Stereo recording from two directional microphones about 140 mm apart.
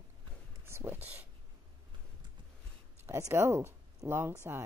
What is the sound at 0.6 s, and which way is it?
Speech, 20° right (ahead or behind).